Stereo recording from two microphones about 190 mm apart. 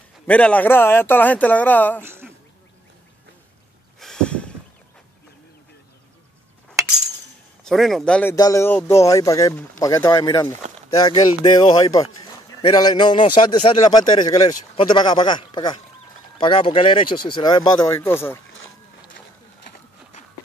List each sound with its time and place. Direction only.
0.3 s speech: 5° left (ahead or behind)
2.0 s speech: 10° right (ahead or behind)
4.0 s snort: 5° left (ahead or behind)
7.6 s a man's voice: centre (ahead or behind)